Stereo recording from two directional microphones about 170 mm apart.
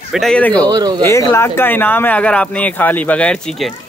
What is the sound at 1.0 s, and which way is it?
A man's voice, 15° left (ahead or behind).